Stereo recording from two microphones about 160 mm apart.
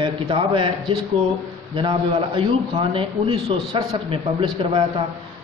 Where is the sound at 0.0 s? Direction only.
30° right (ahead or behind).